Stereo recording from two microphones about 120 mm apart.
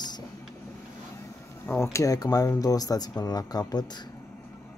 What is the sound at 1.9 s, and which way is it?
Speech, 30° left (ahead or behind).